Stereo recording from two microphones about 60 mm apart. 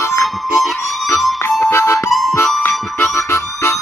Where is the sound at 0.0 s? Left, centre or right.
Left.